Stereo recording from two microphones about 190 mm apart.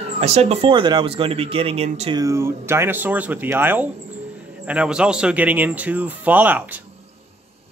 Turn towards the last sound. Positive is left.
turn(degrees=-10)  # may be behind; listen again after turning